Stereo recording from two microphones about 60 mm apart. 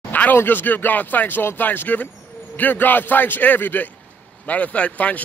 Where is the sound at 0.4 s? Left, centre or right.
Left.